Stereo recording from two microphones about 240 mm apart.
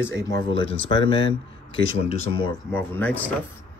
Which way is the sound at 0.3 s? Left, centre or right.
Centre.